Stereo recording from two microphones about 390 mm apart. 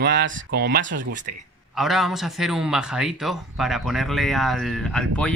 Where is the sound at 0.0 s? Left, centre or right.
Right.